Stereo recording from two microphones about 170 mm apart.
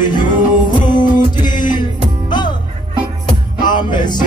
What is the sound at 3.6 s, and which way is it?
Music, 25° left (ahead or behind).